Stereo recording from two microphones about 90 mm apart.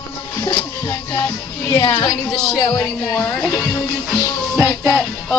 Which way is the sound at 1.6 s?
55° left (ahead or behind).